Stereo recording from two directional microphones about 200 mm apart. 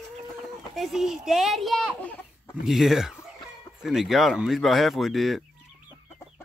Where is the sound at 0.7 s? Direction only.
Centre (ahead or behind).